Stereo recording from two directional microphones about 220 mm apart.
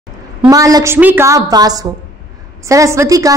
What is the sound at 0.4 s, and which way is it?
A woman's voice, 15° right (ahead or behind).